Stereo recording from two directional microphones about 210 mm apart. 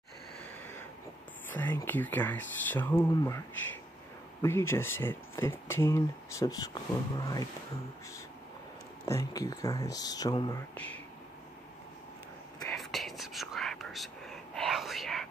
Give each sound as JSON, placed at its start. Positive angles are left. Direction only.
{"t": 1.5, "sound": "speech", "side_deg": 10}
{"t": 9.0, "sound": "speech", "side_deg": 15}
{"t": 12.7, "sound": "whispering", "side_deg": 0}